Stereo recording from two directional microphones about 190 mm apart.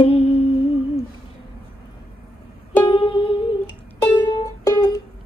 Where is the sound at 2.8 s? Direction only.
25° left (ahead or behind).